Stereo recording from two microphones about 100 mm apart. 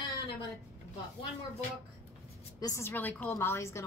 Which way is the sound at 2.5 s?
35° left (ahead or behind).